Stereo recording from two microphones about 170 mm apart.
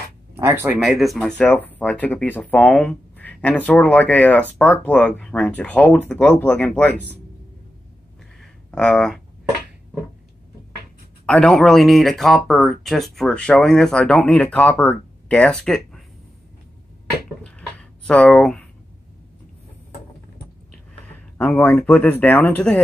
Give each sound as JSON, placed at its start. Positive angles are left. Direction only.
{"t": 0.4, "sound": "speech", "side_deg": -15}
{"t": 0.7, "sound": "speech", "side_deg": 0}
{"t": 8.4, "sound": "a sound", "side_deg": 5}
{"t": 11.2, "sound": "speech", "side_deg": 5}
{"t": 17.4, "sound": "a sound", "side_deg": 5}
{"t": 21.4, "sound": "speech", "side_deg": 10}